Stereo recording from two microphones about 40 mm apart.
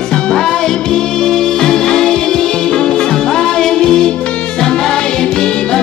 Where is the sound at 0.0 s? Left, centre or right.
Left.